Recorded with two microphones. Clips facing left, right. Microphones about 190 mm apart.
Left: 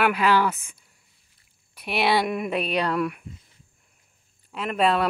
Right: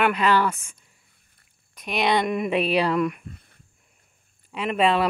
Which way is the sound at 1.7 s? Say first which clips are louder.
Even; 10° left (ahead or behind).